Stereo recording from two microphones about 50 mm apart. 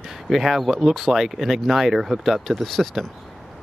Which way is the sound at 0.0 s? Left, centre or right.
Centre.